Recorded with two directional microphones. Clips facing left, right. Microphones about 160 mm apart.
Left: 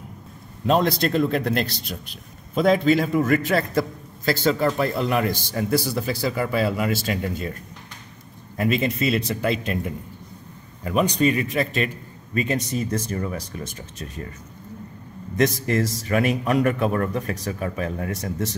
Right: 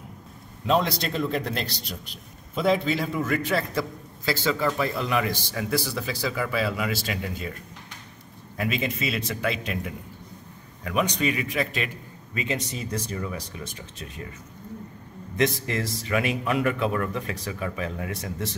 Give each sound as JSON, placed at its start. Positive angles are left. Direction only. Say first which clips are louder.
{"t": 0.7, "sound": "a man's voice", "louder": "left 4 dB", "side_deg": 45}
{"t": 8.5, "sound": "a man's voice", "louder": "left 6 dB", "side_deg": 45}
{"t": 10.8, "sound": "a man's voice", "louder": "left 5 dB", "side_deg": 35}
{"t": 15.3, "sound": "a man's voice", "louder": "left 4 dB", "side_deg": 45}